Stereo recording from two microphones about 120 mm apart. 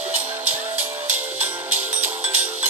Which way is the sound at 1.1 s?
15° right (ahead or behind).